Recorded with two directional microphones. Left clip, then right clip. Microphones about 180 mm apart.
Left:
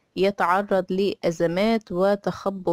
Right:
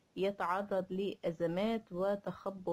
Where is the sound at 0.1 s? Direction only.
35° left (ahead or behind).